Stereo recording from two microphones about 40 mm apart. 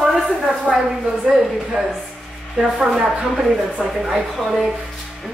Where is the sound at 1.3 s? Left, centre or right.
Centre.